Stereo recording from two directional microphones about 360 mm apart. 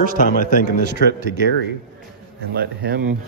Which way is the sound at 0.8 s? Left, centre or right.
Right.